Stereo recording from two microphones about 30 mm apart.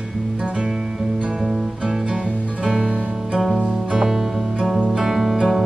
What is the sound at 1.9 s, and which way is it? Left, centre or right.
Music, centre.